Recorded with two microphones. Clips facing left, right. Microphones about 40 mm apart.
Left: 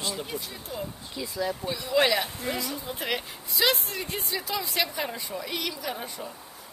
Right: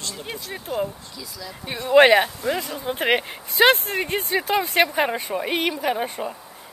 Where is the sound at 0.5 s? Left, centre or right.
Right.